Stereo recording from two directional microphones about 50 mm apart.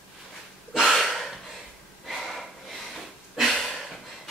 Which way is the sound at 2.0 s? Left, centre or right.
Centre.